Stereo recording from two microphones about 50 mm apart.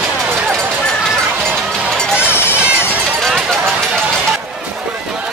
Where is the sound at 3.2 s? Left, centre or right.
Centre.